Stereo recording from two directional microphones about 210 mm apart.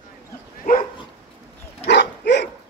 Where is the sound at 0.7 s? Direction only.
45° left (ahead or behind).